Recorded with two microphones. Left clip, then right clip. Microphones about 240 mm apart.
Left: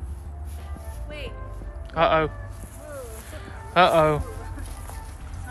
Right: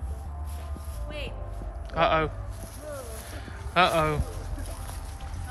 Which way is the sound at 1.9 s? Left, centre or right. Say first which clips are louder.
Left 3 dB; centre.